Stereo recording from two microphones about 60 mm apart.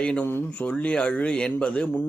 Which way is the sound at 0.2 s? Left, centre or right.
Left.